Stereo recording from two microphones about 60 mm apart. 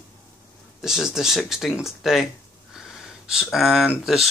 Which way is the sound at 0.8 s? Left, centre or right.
Centre.